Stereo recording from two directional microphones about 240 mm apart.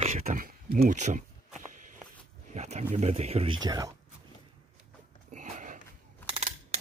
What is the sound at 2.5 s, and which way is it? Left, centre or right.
Speech, right.